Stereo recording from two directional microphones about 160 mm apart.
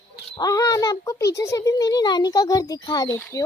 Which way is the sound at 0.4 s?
20° left (ahead or behind).